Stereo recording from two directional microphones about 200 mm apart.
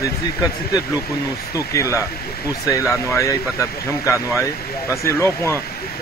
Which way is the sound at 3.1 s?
15° left (ahead or behind).